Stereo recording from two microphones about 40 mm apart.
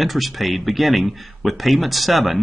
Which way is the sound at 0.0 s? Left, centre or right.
Centre.